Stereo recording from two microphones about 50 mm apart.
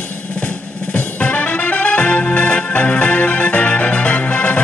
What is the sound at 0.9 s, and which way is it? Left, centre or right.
Music, left.